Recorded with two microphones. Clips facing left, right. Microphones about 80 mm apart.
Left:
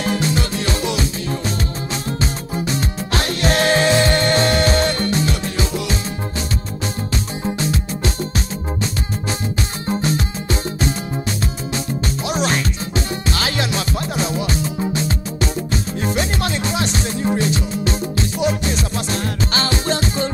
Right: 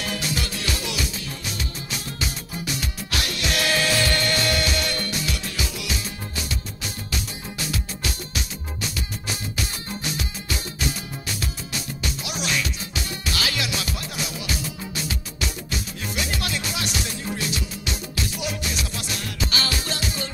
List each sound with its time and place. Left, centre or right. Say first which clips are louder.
0.0 s music: left 8 dB; left
2.0 s music: left 8 dB; left
7.4 s music: left 9 dB; left
9.8 s music: left 10 dB; left
12.3 s music: left 8 dB; left